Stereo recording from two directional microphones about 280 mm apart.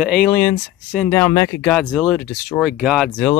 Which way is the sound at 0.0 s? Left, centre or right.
Centre.